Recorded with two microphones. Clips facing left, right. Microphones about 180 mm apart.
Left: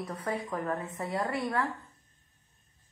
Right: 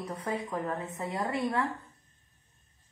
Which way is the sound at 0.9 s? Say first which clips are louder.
Even; 25° right (ahead or behind).